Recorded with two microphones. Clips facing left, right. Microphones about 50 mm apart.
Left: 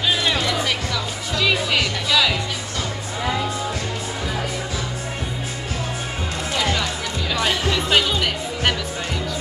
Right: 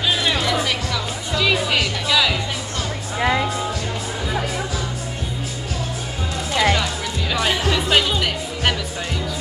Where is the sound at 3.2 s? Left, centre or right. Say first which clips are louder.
Right 5 dB; right.